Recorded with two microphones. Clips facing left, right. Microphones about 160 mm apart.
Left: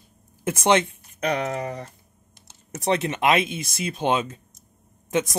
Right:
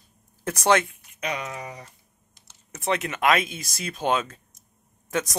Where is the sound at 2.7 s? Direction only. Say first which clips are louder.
Left 3 dB; 35° left (ahead or behind).